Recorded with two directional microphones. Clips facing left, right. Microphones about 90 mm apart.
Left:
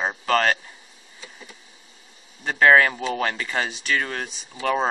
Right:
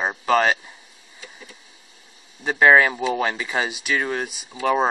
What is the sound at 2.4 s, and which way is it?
Speech, 10° right (ahead or behind).